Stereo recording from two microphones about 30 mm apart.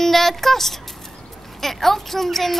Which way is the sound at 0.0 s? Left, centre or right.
Centre.